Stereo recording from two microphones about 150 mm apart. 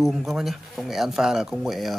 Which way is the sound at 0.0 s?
Centre (ahead or behind).